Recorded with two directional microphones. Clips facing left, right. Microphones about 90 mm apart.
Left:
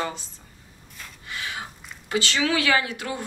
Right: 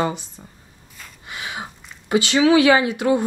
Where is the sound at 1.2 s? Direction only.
20° right (ahead or behind).